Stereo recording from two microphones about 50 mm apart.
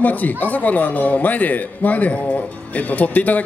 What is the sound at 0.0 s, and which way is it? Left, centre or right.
A man's voice, left.